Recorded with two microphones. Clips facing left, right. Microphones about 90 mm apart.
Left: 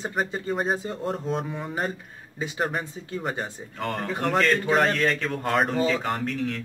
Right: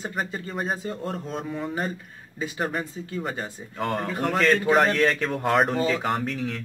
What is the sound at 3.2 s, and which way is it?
Speech, 20° left (ahead or behind).